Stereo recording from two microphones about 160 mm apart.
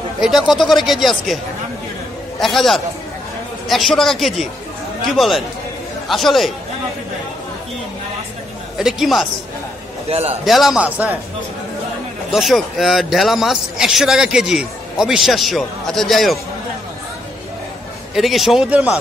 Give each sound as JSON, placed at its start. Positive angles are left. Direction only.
{"t": 0.2, "sound": "a man's voice", "side_deg": 0}
{"t": 2.4, "sound": "a man's voice", "side_deg": 0}
{"t": 8.7, "sound": "a man's voice", "side_deg": 0}
{"t": 10.0, "sound": "a man's voice", "side_deg": -40}
{"t": 10.4, "sound": "a man's voice", "side_deg": 0}
{"t": 12.3, "sound": "a man's voice", "side_deg": 0}
{"t": 18.1, "sound": "a man's voice", "side_deg": 0}